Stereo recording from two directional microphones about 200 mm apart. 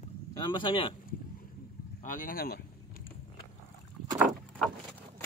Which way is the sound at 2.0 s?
40° left (ahead or behind).